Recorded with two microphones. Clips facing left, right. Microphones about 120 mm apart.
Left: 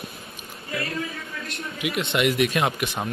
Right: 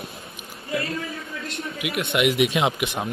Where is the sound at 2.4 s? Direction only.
15° right (ahead or behind).